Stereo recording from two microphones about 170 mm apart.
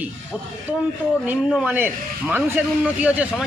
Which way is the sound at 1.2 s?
10° right (ahead or behind).